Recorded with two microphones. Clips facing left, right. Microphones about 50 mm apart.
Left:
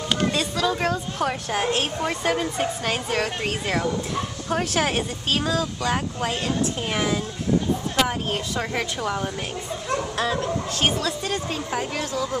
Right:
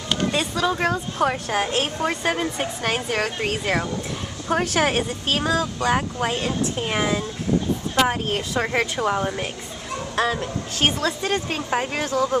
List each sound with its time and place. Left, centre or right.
0.3 s a woman's voice: right
8.9 s a woman's voice: centre
10.2 s speech: right